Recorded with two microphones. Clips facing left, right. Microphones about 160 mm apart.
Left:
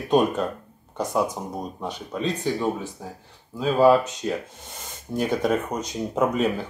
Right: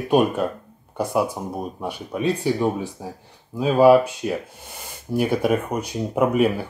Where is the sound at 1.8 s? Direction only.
10° right (ahead or behind).